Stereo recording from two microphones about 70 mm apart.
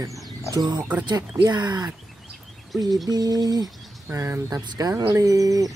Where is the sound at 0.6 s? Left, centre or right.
Right.